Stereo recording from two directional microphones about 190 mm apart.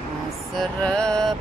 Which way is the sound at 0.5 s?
5° left (ahead or behind).